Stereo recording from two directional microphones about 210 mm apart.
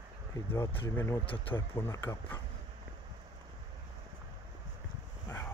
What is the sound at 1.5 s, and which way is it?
Speech, 10° left (ahead or behind).